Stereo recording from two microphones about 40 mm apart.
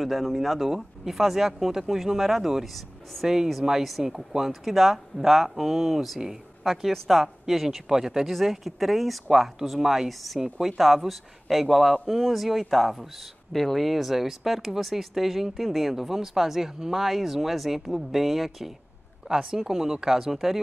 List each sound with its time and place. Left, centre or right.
0.0 s a man's voice: centre
8.3 s a man's voice: centre